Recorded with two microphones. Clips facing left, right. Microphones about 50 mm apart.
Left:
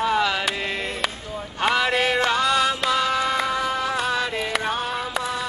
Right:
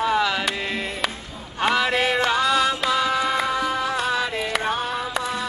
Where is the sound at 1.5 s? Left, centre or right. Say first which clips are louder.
Even; centre.